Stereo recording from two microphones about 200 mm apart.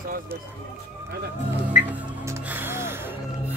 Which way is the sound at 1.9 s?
10° right (ahead or behind).